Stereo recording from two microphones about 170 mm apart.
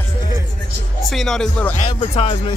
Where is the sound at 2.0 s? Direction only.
35° left (ahead or behind).